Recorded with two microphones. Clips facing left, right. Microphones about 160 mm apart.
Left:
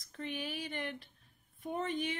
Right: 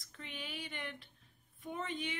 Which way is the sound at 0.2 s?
40° left (ahead or behind).